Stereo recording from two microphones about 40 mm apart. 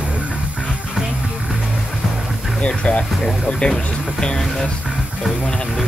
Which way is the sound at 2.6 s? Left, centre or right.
Left.